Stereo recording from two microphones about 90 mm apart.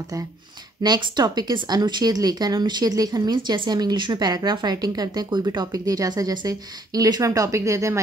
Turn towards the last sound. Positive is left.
turn(degrees=-35)  # may be behind; listen again after turning